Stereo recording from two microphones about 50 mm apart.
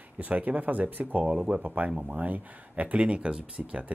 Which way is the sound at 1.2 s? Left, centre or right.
Centre.